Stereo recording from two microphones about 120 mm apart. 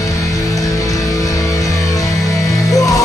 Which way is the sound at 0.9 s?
30° left (ahead or behind).